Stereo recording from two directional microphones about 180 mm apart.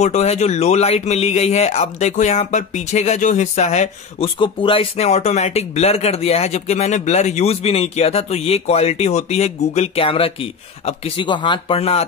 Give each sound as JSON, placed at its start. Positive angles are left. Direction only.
{"t": 0.0, "sound": "speech", "side_deg": 40}